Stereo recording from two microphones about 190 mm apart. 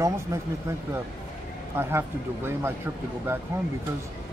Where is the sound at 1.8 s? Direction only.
15° right (ahead or behind).